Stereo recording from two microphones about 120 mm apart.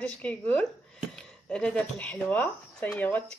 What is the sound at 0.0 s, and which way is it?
Speech, 10° left (ahead or behind).